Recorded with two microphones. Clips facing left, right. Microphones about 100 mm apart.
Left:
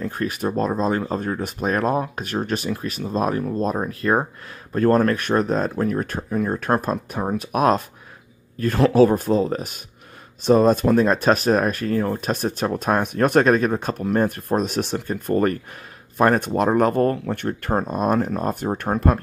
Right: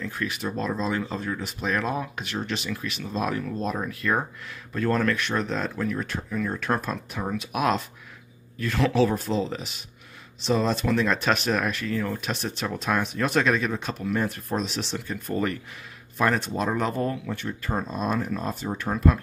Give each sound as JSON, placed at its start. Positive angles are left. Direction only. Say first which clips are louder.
{"t": 0.0, "sound": "speech", "louder": "left 6 dB", "side_deg": 45}